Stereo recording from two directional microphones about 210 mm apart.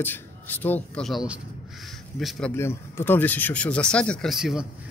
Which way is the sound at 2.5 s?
10° left (ahead or behind).